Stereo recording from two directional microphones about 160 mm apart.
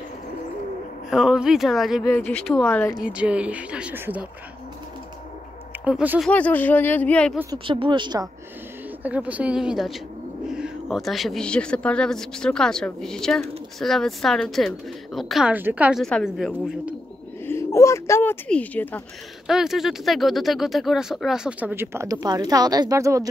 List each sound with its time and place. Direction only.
1.1 s a man's voice: 5° right (ahead or behind)
2.0 s speech: 10° left (ahead or behind)
3.0 s speech: 5° right (ahead or behind)
5.9 s a man's voice: 5° right (ahead or behind)
6.3 s speech: 10° left (ahead or behind)
7.5 s speech: 35° right (ahead or behind)
9.0 s a man's voice: 10° right (ahead or behind)
16.0 s a man's voice: 5° left (ahead or behind)
17.5 s speech: 15° left (ahead or behind)
19.4 s a man's voice: 5° right (ahead or behind); by 23.2 s 20° right (ahead or behind)